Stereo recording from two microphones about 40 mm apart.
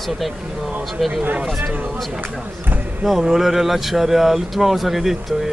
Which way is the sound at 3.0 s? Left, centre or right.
Centre.